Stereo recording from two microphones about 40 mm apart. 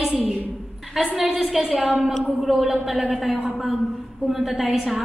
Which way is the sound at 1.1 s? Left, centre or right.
Centre.